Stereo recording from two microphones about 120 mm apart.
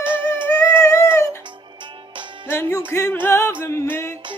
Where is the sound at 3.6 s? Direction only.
20° left (ahead or behind).